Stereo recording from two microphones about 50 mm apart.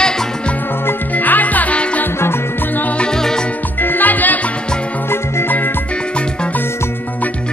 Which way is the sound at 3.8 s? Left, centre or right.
Left.